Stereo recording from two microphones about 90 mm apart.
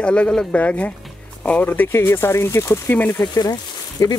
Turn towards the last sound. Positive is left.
turn(degrees=45)  # may be behind; listen again after turning